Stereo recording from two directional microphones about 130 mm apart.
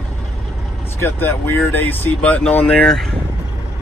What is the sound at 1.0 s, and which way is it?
Speech, 15° left (ahead or behind).